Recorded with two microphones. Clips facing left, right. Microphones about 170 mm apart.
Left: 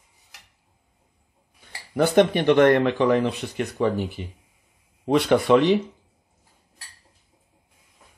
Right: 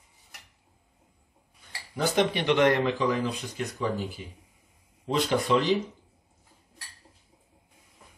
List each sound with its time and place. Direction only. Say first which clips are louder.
2.0 s speech: left 7 dB; 55° left (ahead or behind)